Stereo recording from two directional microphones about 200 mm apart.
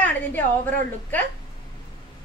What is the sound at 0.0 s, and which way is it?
A woman's voice, 10° left (ahead or behind).